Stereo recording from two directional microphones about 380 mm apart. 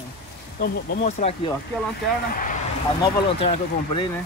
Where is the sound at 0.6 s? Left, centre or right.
Centre.